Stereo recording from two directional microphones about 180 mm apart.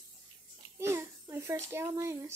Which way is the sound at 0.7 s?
15° right (ahead or behind).